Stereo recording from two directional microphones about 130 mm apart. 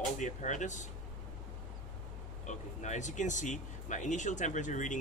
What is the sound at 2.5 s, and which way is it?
Speech, 65° left (ahead or behind).